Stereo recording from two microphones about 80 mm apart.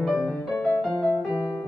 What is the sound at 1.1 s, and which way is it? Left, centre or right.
Music, centre.